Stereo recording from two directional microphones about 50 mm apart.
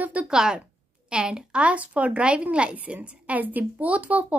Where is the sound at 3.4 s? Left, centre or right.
Right.